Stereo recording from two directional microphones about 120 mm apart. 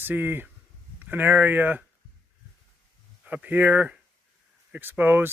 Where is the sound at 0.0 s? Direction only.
15° right (ahead or behind).